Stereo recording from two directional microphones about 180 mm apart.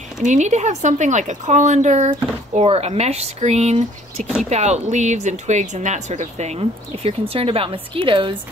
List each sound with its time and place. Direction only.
0.2 s speech: 40° right (ahead or behind)